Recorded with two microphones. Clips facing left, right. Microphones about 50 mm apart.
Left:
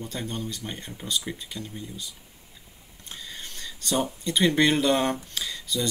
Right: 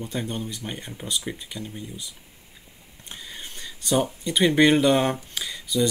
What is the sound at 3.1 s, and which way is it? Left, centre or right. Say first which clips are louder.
Speech: right 1 dB; centre.